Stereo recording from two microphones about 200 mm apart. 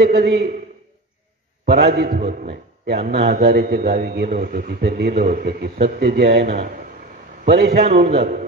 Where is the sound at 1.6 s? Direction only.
55° right (ahead or behind).